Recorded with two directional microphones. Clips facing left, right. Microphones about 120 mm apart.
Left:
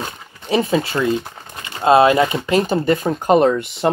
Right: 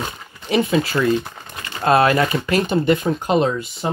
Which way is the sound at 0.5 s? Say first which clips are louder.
Even; 30° left (ahead or behind).